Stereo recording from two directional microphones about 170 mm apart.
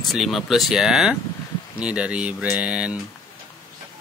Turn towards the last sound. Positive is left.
turn(degrees=-5)  # may be behind; listen again after turning